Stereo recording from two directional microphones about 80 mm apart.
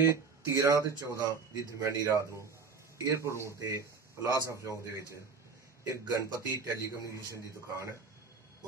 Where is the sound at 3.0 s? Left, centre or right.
Right.